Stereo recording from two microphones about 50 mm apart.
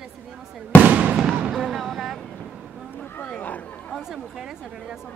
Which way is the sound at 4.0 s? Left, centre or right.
Centre.